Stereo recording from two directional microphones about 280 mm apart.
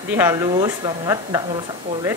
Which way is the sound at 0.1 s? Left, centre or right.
Centre.